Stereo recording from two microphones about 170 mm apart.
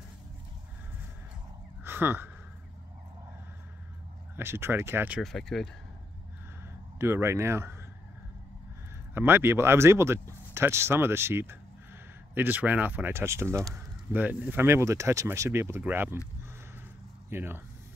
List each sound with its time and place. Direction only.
1.8 s a sound: 10° right (ahead or behind)
4.4 s speech: 15° right (ahead or behind)
5.2 s speech: centre (ahead or behind)
6.6 s speech: 15° right (ahead or behind)
9.1 s speech: 15° right (ahead or behind)
17.3 s speech: 15° right (ahead or behind)